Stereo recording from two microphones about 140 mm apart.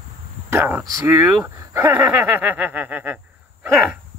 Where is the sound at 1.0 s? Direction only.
15° right (ahead or behind).